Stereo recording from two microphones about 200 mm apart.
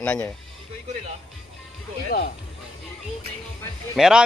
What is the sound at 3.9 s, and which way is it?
Speech, centre (ahead or behind).